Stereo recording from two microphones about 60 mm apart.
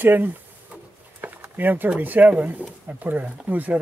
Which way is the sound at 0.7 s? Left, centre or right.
Right.